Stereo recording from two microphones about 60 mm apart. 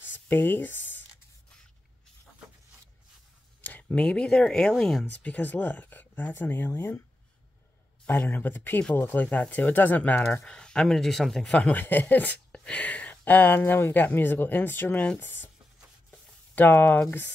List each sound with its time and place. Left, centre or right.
0.1 s a sound: left
3.9 s speech: centre
5.0 s speech: left
8.1 s speech: left
10.4 s speech: centre
11.5 s speech: left
12.5 s speech: centre; by 15.0 s left
16.5 s speech: left